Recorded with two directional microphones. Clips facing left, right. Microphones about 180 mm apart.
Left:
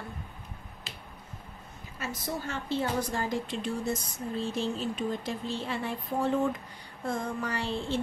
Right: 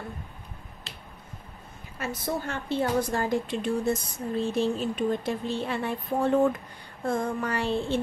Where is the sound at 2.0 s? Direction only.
55° right (ahead or behind).